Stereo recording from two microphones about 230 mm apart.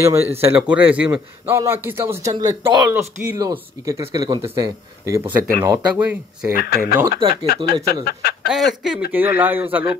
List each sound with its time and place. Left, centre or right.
0.0 s a man's voice: centre
6.5 s speech: left
7.0 s speech: centre
7.4 s speech: left
8.5 s a man's voice: centre